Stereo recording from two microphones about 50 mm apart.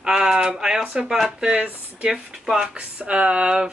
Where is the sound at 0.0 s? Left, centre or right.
Centre.